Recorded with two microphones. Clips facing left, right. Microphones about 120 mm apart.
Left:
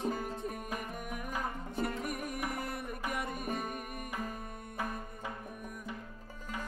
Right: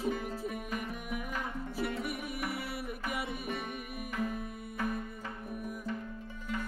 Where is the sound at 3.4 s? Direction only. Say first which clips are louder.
Left 1 dB; 40° left (ahead or behind).